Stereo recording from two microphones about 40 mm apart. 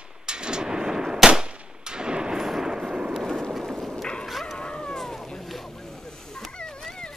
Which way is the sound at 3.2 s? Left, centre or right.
Centre.